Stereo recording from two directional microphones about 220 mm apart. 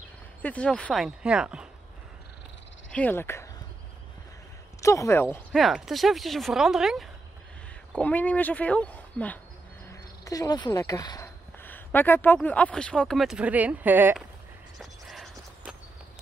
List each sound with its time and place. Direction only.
0.4 s speech: 5° left (ahead or behind)
2.9 s speech: 5° left (ahead or behind)
4.8 s speech: 15° left (ahead or behind); by 14.2 s 10° right (ahead or behind)
14.8 s a sound: centre (ahead or behind)